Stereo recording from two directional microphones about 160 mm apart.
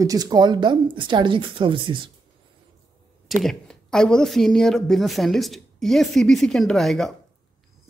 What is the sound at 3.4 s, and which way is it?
Speech, 5° left (ahead or behind).